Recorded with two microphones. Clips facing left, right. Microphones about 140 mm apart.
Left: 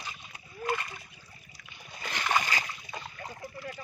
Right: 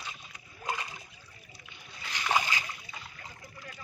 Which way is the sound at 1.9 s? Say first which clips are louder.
Even; 50° left (ahead or behind).